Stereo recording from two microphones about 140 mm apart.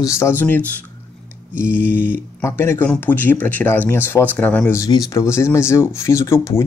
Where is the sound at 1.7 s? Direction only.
15° left (ahead or behind).